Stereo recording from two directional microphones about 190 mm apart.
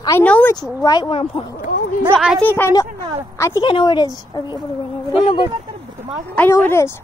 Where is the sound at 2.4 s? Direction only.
10° left (ahead or behind).